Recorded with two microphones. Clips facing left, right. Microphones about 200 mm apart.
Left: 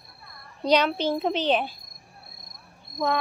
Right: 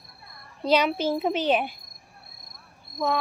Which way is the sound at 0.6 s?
5° right (ahead or behind).